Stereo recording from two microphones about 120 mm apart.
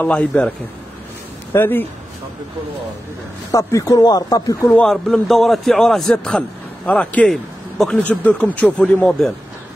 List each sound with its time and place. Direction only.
0.0 s speech: 10° left (ahead or behind)
1.5 s speech: 15° left (ahead or behind)
3.5 s speech: 25° left (ahead or behind)
4.7 s a man's voice: 5° left (ahead or behind)